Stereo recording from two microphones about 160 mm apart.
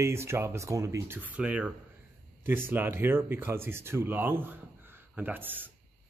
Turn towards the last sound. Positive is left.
turn(degrees=-10)  # may be behind; listen again after turning